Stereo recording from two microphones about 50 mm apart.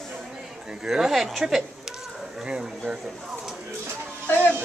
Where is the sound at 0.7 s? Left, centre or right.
Centre.